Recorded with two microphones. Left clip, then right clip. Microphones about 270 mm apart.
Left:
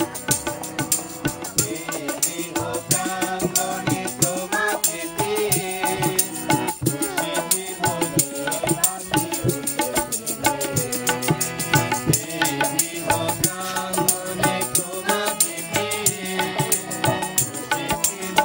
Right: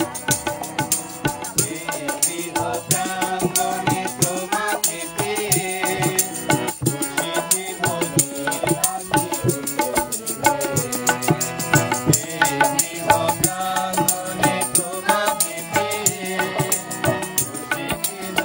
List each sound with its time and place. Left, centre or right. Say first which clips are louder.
0.0 s music: right 2 dB; right
15.3 s music: right 3 dB; centre